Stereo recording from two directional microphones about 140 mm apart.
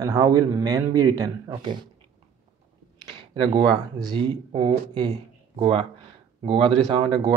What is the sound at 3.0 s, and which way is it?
Speech, 35° right (ahead or behind).